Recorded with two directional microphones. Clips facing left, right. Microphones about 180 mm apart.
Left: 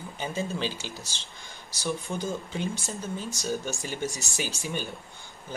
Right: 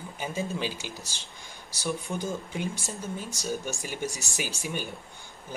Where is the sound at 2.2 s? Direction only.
15° right (ahead or behind).